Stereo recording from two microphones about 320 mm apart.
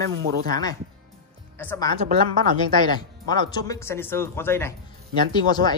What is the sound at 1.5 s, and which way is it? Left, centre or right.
Speech, centre.